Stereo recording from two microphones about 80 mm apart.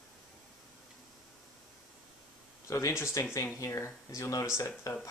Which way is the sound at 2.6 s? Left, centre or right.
Left.